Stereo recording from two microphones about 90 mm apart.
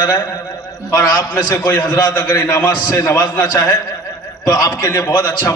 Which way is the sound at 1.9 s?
45° left (ahead or behind).